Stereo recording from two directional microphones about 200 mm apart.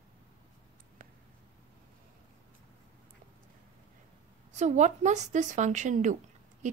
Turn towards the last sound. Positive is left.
turn(degrees=-40)  # may be behind; listen again after turning